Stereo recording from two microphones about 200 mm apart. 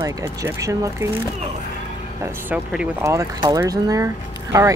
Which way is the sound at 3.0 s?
15° right (ahead or behind).